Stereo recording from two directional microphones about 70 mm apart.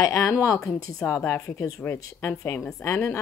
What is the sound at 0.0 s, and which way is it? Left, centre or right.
A woman's voice, left.